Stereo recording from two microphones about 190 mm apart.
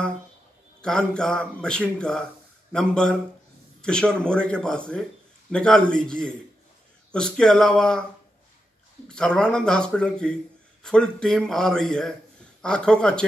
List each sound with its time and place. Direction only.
0.8 s a man's voice: 5° left (ahead or behind)
9.1 s a man's voice: 5° left (ahead or behind)